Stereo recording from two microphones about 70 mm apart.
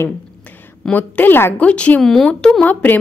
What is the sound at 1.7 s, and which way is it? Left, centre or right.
Speech, centre.